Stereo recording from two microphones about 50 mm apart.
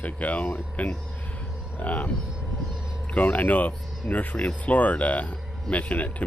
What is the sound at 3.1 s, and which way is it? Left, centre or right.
Speech, left.